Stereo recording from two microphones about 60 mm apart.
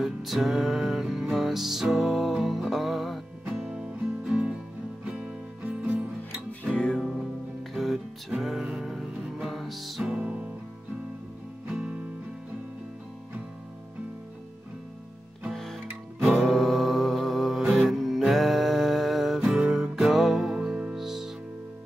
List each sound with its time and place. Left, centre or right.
0.0 s music: centre
5.6 s music: right
7.0 s music: centre
10.0 s music: right
11.7 s music: centre
15.5 s music: centre
20.9 s music: centre